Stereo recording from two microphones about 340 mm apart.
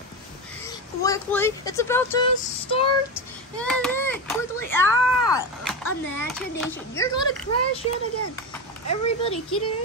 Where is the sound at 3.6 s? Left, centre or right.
Centre.